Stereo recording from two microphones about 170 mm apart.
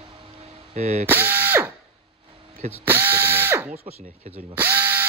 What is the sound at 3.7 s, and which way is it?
Speech, 40° right (ahead or behind).